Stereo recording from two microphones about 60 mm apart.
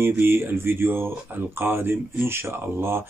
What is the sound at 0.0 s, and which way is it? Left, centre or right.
Speech, right.